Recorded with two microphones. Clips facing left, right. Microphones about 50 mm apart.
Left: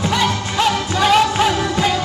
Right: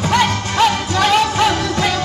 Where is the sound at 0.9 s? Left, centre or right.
Centre.